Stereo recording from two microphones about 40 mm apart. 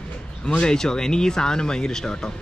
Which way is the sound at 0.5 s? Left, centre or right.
Left.